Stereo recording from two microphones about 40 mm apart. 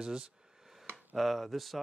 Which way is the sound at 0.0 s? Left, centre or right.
Centre.